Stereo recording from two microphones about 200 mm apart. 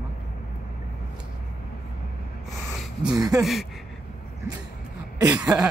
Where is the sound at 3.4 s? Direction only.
Centre (ahead or behind).